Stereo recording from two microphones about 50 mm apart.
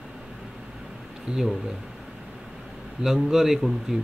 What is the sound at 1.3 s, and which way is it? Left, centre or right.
Speech, centre.